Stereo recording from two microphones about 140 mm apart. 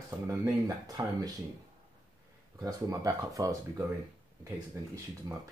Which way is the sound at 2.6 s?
25° right (ahead or behind).